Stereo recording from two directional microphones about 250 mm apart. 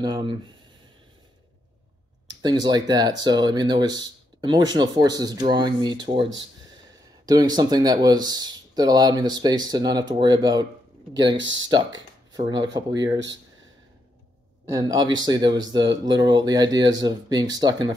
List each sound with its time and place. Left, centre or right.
0.0 s speech: centre
2.2 s speech: centre
11.3 s speech: right
11.7 s speech: centre
14.7 s speech: centre